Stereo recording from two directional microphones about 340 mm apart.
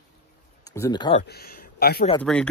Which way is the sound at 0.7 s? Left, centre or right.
Centre.